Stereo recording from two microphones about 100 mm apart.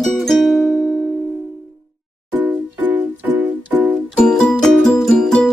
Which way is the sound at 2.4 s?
20° right (ahead or behind).